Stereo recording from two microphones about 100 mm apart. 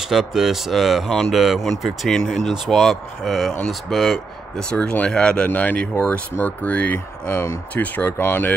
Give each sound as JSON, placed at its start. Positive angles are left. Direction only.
{"t": 0.0, "sound": "speech", "side_deg": -5}